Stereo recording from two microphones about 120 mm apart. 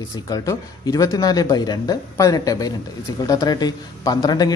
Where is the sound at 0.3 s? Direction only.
30° left (ahead or behind).